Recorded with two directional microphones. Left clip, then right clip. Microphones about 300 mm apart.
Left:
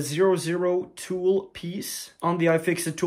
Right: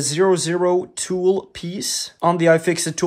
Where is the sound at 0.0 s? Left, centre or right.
Centre.